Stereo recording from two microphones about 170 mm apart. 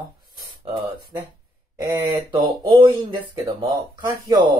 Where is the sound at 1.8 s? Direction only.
15° right (ahead or behind).